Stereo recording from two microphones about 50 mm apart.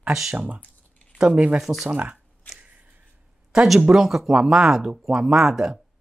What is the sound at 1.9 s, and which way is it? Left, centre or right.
Speech, right.